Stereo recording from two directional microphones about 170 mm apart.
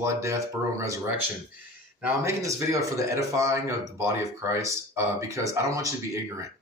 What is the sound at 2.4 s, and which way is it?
Speech, 20° right (ahead or behind).